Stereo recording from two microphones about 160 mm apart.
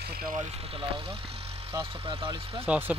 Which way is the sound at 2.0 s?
35° right (ahead or behind).